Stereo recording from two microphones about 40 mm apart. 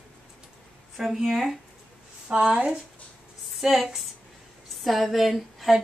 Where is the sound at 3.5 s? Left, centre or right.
Centre.